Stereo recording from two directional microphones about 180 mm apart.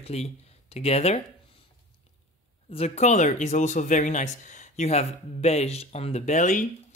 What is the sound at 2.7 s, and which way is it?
Speech, 35° left (ahead or behind).